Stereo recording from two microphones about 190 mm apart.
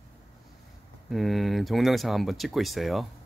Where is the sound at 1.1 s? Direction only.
Centre (ahead or behind).